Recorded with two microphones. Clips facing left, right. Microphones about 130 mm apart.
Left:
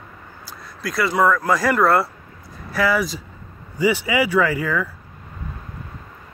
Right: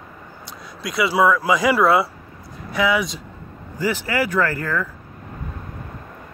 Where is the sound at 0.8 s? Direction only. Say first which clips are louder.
Right 1 dB; centre (ahead or behind).